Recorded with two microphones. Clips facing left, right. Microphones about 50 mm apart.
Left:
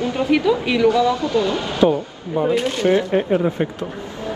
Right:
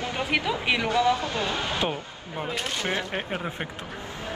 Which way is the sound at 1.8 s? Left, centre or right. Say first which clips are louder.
Left 16 dB; left.